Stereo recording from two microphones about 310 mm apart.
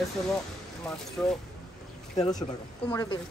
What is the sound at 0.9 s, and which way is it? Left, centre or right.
Speech, centre.